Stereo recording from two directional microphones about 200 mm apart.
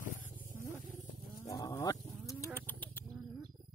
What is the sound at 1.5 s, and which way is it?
Goat, 15° left (ahead or behind).